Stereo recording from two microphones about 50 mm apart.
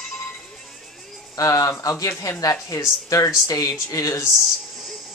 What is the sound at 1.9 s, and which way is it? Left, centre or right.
Speech, left.